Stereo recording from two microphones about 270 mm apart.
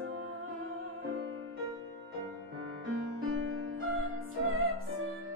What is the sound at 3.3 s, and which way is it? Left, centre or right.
Music, right.